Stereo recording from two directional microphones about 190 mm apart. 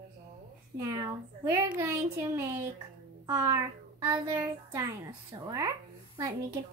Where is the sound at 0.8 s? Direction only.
15° right (ahead or behind).